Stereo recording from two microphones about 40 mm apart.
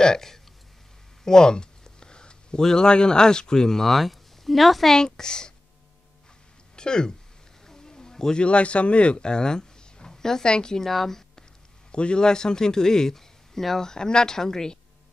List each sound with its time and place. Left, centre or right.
0.0 s a man's voice: centre
1.2 s a sound: centre
2.6 s a man's voice: centre
4.9 s a man's voice: centre
6.8 s speech: centre
7.6 s a sound: centre
8.4 s speech: left
10.9 s speech: centre
11.9 s a man's voice: left